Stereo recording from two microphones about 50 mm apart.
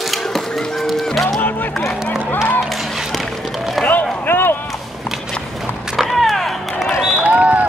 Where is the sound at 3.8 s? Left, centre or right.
Left.